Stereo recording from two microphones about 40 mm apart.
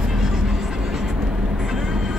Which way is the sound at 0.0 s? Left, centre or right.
Centre.